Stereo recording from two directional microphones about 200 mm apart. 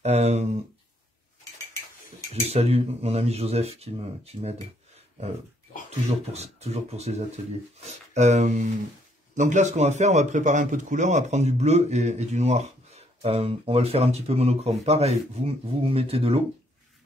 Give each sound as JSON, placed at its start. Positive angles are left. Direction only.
{"t": 0.0, "sound": "a man's voice", "side_deg": -30}
{"t": 2.3, "sound": "a man's voice", "side_deg": -30}
{"t": 5.9, "sound": "a man's voice", "side_deg": -30}